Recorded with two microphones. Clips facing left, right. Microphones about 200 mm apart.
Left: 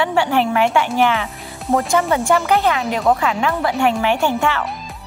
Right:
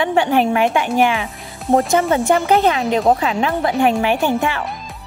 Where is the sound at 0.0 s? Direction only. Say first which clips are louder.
Right 2 dB; 20° right (ahead or behind).